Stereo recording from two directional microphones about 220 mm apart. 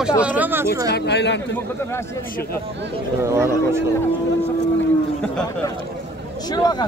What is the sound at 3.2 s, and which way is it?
Speech, 10° right (ahead or behind).